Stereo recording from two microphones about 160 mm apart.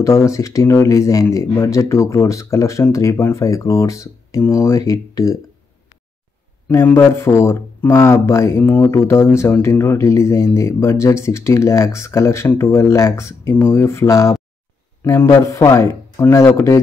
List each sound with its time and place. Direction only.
0.0 s speech: 20° left (ahead or behind)
6.7 s speech: 15° left (ahead or behind)